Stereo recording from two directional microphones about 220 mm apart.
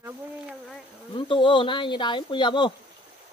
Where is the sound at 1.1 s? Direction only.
25° left (ahead or behind).